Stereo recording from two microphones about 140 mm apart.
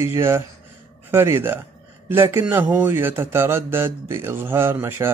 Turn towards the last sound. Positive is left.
turn(degrees=-15)  # may be behind; listen again after turning